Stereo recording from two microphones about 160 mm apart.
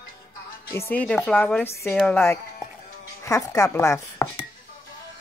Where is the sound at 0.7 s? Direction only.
15° left (ahead or behind).